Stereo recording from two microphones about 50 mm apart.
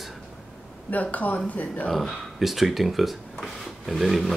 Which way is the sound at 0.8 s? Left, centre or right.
Left.